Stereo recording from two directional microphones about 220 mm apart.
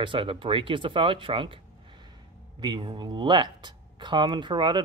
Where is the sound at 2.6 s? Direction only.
20° right (ahead or behind).